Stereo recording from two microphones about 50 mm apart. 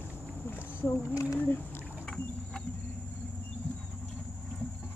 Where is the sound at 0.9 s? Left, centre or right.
Left.